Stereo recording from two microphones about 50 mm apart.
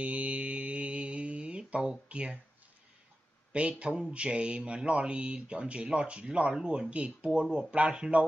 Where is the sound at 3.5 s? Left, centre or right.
Right.